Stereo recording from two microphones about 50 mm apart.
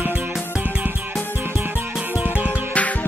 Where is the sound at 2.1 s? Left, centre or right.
Right.